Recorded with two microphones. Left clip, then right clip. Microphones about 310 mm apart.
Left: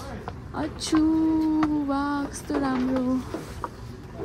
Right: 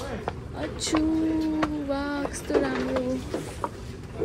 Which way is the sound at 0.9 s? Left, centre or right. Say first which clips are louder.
Left 3 dB; centre.